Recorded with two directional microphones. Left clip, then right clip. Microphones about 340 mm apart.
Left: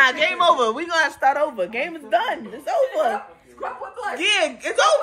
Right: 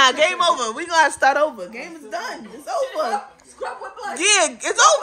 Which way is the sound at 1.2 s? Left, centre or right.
Right.